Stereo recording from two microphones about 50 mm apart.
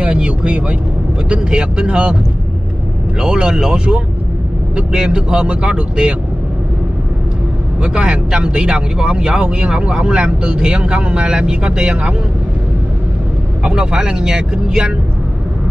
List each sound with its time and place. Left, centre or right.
0.0 s speech: right
3.2 s speech: centre
7.8 s speech: centre
13.7 s speech: centre